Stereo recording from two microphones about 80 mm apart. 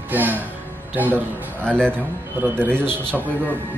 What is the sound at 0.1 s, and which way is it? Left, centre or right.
Speech, right.